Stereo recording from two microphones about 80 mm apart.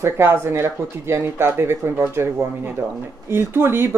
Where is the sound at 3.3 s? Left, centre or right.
Right.